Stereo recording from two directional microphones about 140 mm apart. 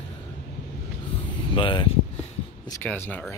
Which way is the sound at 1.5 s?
35° left (ahead or behind).